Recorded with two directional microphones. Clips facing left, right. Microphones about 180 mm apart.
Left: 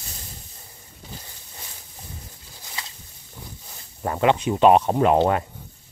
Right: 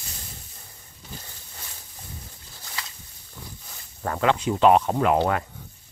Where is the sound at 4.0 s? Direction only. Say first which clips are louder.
Left 3 dB; 20° left (ahead or behind).